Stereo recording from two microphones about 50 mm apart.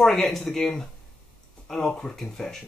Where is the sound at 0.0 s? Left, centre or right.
Centre.